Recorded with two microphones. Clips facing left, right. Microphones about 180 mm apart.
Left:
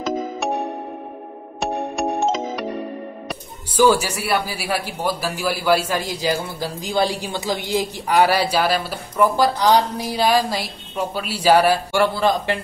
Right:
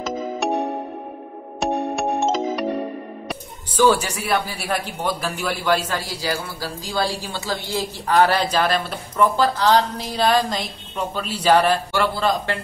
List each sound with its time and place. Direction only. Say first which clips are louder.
1.6 s music: right 1 dB; centre (ahead or behind)
3.3 s speech: even; 10° left (ahead or behind)